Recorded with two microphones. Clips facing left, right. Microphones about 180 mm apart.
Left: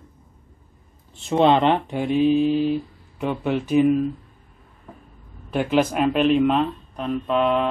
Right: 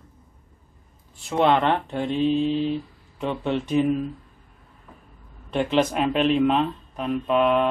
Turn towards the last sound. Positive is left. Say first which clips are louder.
# even
turn(degrees=-5)  # may be behind; listen again after turning